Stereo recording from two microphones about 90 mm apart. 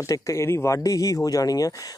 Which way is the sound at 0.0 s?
35° left (ahead or behind).